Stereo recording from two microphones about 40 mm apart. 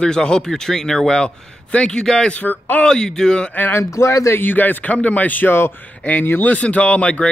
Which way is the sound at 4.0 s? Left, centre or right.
Left.